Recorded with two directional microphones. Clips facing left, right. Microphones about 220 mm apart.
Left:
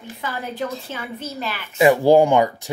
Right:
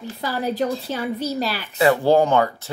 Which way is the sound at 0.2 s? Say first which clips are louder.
Right 5 dB; 35° right (ahead or behind).